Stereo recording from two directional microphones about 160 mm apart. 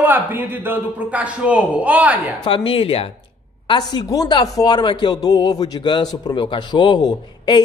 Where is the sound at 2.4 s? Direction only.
35° left (ahead or behind).